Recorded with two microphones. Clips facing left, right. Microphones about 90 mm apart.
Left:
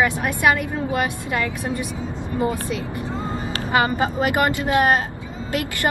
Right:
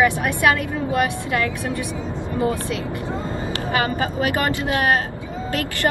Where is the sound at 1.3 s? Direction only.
20° left (ahead or behind).